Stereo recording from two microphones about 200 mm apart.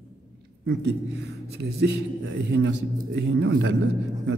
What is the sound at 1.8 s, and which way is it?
A man's voice, 65° right (ahead or behind).